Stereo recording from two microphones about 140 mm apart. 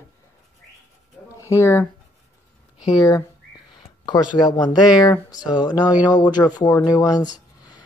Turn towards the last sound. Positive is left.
turn(degrees=25)  # may be behind; listen again after turning